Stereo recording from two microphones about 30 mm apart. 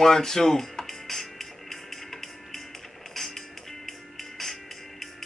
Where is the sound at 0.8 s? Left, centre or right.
Centre.